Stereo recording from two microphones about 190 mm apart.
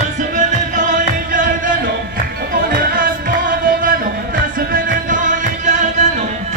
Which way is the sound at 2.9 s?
45° right (ahead or behind).